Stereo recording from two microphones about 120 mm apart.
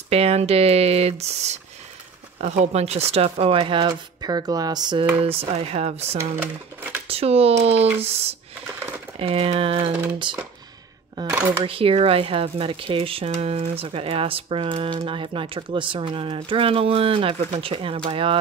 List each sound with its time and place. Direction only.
0.1 s speech: 55° right (ahead or behind); by 5.0 s 35° right (ahead or behind)
5.2 s speech: 55° right (ahead or behind)
6.1 s speech: 15° right (ahead or behind)
7.1 s speech: 55° right (ahead or behind)
10.3 s speech: 40° right (ahead or behind)
11.2 s speech: 30° right (ahead or behind)
11.6 s speech: 50° right (ahead or behind)
13.3 s speech: 60° right (ahead or behind)